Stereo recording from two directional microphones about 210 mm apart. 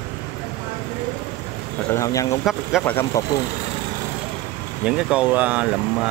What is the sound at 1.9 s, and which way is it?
Speech, 15° left (ahead or behind).